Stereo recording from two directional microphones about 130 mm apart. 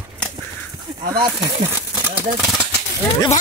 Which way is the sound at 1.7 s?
15° right (ahead or behind).